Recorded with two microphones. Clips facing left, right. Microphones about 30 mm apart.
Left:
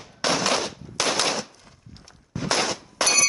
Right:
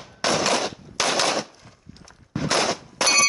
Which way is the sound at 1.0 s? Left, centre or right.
Centre.